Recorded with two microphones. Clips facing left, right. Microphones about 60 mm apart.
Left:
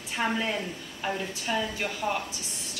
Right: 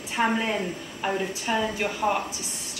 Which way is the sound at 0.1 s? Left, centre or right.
Right.